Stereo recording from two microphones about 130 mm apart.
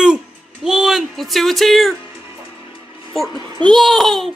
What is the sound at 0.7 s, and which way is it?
Speech, 5° right (ahead or behind).